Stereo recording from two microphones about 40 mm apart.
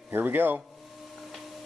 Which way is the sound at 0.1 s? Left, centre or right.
Right.